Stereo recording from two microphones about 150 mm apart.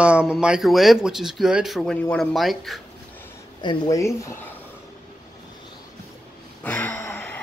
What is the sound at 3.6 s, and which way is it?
Speech, 25° left (ahead or behind).